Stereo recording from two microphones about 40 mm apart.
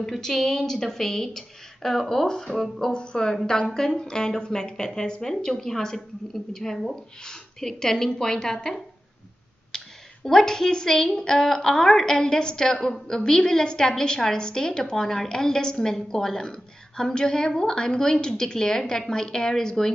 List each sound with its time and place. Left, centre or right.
0.2 s a woman's voice: centre
2.2 s speech: centre
2.5 s a woman's voice: centre
2.9 s a woman's voice: left
9.7 s a sound: centre
10.2 s a woman's voice: centre